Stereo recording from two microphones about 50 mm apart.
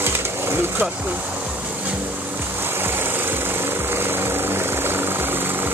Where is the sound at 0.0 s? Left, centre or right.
Right.